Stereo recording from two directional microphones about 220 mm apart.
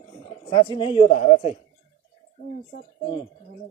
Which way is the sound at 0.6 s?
20° left (ahead or behind).